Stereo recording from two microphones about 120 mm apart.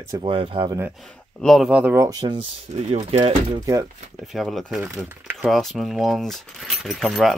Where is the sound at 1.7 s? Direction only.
10° right (ahead or behind).